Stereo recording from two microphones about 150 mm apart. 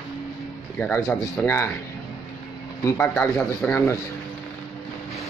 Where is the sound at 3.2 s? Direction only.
15° left (ahead or behind).